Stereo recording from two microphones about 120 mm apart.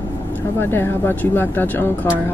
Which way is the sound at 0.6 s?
20° left (ahead or behind).